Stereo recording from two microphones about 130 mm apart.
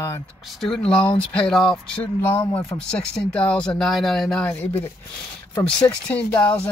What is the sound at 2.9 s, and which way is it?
Speech, 5° left (ahead or behind).